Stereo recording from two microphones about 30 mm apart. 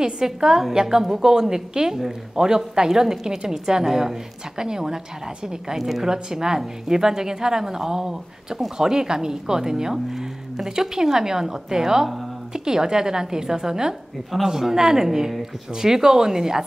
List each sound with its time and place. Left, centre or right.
0.0 s a woman's voice: right